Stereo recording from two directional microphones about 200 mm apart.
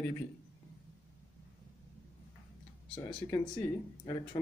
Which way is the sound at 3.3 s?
15° left (ahead or behind).